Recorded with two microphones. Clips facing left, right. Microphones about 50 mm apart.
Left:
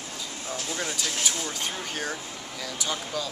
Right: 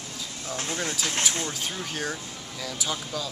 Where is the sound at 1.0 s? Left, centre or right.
Right.